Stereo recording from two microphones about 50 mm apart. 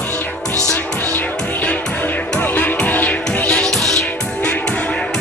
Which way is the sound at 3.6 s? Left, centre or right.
Centre.